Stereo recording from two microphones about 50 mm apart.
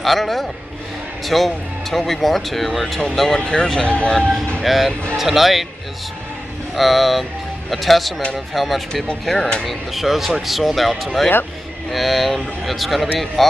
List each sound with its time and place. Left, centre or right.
0.0 s speech: centre
3.3 s speech: centre
4.6 s speech: centre
6.7 s speech: centre